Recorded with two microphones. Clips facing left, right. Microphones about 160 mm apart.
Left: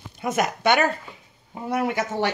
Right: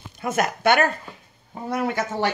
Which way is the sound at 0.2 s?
20° left (ahead or behind).